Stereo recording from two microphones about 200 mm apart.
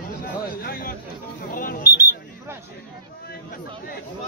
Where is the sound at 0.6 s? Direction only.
50° left (ahead or behind).